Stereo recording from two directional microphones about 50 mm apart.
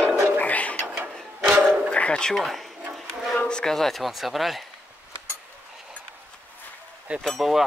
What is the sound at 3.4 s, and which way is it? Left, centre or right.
Insect, centre.